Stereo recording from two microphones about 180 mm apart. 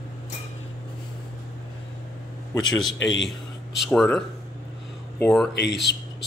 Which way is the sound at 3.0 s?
80° left.